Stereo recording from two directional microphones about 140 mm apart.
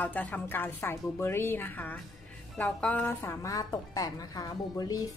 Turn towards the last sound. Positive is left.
turn(degrees=30)  # may be behind; listen again after turning